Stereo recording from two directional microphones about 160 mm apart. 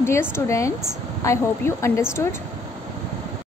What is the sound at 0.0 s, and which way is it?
A woman's voice, 15° left (ahead or behind).